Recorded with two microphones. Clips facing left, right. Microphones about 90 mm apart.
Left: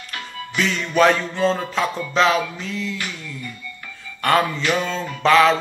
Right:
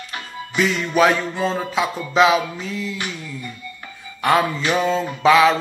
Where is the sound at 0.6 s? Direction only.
10° right (ahead or behind).